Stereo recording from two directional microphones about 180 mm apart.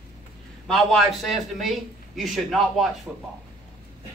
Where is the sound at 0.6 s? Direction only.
Centre (ahead or behind).